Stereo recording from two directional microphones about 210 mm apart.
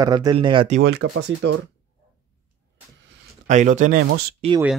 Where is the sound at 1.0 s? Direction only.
75° right (ahead or behind).